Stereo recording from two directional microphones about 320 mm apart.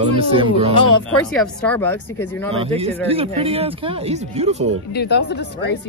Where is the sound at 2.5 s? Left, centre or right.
Centre.